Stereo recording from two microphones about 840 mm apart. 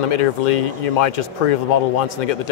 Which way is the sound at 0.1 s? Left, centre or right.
Left.